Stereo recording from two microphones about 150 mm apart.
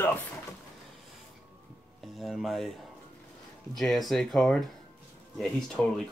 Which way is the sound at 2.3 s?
Centre (ahead or behind).